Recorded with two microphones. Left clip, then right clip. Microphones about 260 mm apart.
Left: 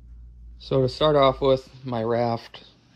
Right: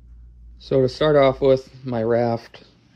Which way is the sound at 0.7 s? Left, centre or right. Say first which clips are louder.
Right 3 dB; left.